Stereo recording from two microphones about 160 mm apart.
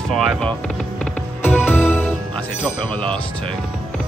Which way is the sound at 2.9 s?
5° left (ahead or behind).